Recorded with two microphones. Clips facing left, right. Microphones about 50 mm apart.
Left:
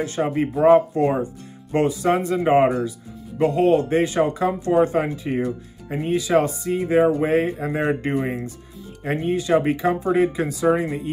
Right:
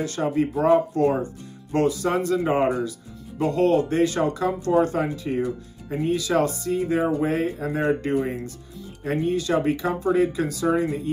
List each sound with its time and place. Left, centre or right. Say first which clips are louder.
0.0 s speech: left 1 dB; left